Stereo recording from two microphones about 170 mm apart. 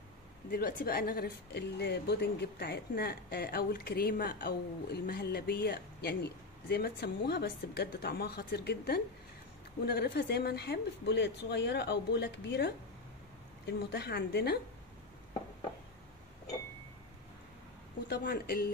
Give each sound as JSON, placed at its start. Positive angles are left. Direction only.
{"t": 0.5, "sound": "a woman's voice", "side_deg": 60}
{"t": 5.0, "sound": "a woman's voice", "side_deg": 70}
{"t": 13.7, "sound": "a woman's voice", "side_deg": 75}
{"t": 18.0, "sound": "a woman's voice", "side_deg": 75}